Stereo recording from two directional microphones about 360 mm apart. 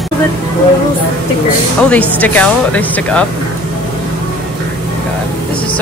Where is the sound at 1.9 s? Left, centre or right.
Centre.